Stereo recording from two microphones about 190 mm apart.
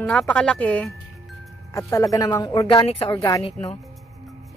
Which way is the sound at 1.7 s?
15° left (ahead or behind).